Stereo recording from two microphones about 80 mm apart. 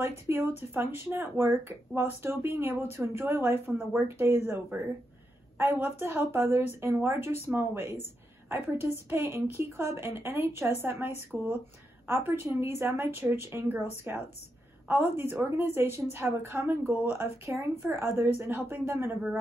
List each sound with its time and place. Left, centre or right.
0.0 s a woman's voice: right
12.3 s a woman's voice: right
17.5 s speech: right